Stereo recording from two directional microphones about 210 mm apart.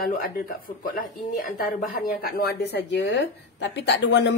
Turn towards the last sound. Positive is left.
turn(degrees=55)  # may be behind; listen again after turning